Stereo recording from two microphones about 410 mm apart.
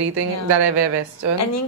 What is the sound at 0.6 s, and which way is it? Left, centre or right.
Speech, right.